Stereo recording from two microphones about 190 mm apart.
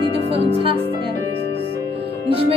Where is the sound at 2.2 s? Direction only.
30° right (ahead or behind).